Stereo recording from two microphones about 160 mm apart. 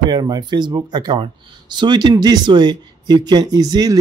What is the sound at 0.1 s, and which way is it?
Speech, 25° right (ahead or behind).